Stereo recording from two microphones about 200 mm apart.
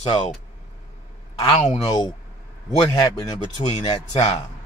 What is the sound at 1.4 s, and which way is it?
Speech, 30° left (ahead or behind).